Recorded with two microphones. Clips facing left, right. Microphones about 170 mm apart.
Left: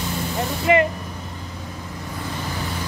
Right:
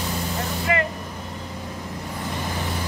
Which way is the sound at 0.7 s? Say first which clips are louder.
Left 7 dB; 20° left (ahead or behind).